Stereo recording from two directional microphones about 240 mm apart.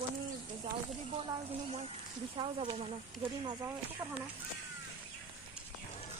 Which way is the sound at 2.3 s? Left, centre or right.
Right.